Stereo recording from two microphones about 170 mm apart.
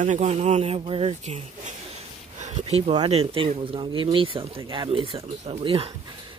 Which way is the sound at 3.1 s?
35° right (ahead or behind).